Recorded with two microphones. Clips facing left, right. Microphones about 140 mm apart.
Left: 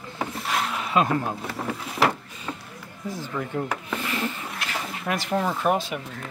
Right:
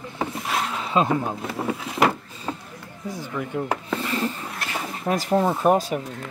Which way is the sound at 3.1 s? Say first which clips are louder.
Right 1 dB; 15° right (ahead or behind).